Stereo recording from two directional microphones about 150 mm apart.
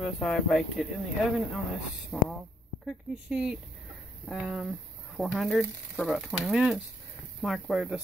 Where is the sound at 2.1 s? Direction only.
10° right (ahead or behind).